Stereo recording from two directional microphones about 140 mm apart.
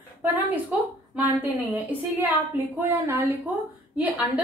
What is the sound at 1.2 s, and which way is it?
A woman's voice, 15° right (ahead or behind).